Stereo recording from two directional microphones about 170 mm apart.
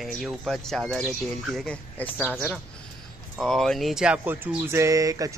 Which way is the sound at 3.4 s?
Centre (ahead or behind).